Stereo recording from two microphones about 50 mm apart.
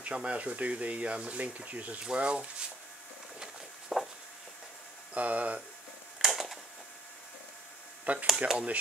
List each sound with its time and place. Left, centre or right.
0.0 s speech: right
2.0 s speech: centre
3.9 s a sound: centre
5.1 s speech: right
6.1 s a sound: centre
8.0 s speech: right